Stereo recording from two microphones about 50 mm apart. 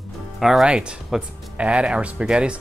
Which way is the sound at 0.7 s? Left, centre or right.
Centre.